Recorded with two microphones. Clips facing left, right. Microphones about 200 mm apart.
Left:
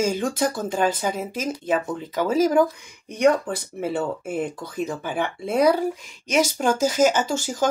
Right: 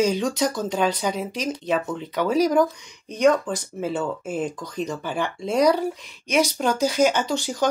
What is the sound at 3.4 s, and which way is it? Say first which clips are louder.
Speech: even; 60° left (ahead or behind).